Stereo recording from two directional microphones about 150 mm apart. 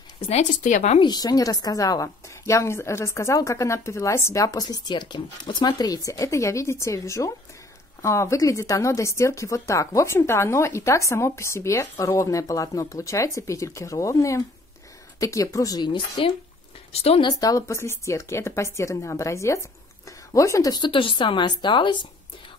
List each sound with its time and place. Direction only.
0.3 s speech: 55° left (ahead or behind)
0.9 s a woman's voice: 25° left (ahead or behind)
16.9 s speech: 40° left (ahead or behind)
17.3 s a woman's voice: 25° left (ahead or behind)